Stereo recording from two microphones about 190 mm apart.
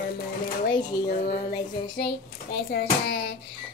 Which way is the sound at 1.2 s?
35° left (ahead or behind).